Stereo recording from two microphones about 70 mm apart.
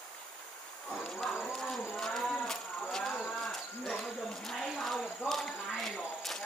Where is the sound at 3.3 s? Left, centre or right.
Centre.